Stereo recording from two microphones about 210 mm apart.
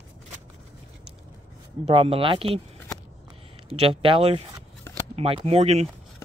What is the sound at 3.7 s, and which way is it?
Speech, 25° right (ahead or behind).